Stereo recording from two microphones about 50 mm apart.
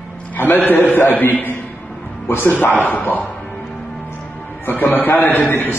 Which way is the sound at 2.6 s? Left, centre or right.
Left.